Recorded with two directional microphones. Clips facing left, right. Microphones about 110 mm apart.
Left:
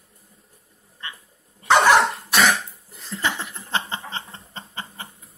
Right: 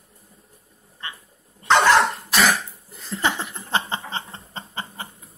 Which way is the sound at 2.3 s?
Centre (ahead or behind).